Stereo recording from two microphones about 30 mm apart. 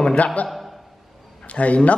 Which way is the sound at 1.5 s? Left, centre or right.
Left.